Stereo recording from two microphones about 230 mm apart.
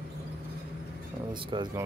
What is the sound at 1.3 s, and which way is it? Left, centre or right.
Speech, right.